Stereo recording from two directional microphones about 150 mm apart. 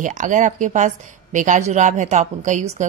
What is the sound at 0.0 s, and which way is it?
A woman's voice, 55° right (ahead or behind).